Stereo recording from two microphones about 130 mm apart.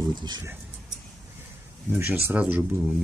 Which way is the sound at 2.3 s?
10° right (ahead or behind).